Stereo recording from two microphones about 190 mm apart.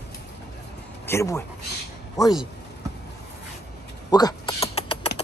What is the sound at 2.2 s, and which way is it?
Mechanisms, 20° left (ahead or behind).